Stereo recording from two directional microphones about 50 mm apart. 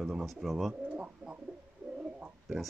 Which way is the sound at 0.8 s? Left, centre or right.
Right.